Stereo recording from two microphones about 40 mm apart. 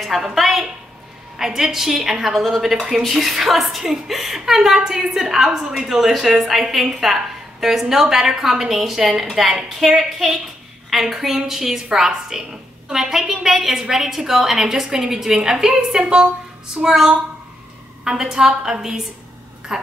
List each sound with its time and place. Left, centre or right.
0.0 s a woman's voice: centre